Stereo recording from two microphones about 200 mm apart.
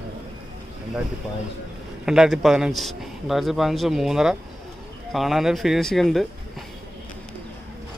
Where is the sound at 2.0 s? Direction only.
5° right (ahead or behind).